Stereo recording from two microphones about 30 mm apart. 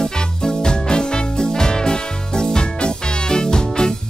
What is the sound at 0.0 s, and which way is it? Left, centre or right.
Music, left.